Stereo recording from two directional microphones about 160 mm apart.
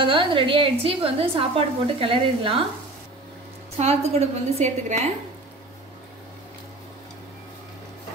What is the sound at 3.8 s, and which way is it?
A woman's voice, 40° right (ahead or behind).